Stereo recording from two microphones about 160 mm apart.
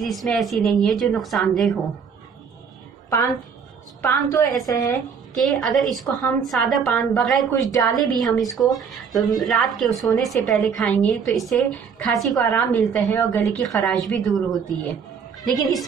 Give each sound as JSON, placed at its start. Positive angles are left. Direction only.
{"t": 0.0, "sound": "a woman's voice", "side_deg": 0}
{"t": 4.0, "sound": "a woman's voice", "side_deg": 20}
{"t": 5.4, "sound": "a woman's voice", "side_deg": 0}